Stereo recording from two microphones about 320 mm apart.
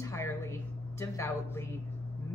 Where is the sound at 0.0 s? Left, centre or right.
Centre.